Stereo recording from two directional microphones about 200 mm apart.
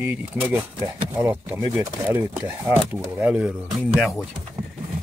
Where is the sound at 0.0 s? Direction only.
10° right (ahead or behind).